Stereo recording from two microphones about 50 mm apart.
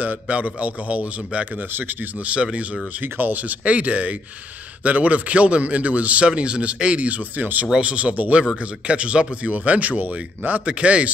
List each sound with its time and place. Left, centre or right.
0.0 s a man's voice: right
1.7 s speech: right
2.1 s a man's voice: right
2.9 s a man's voice: right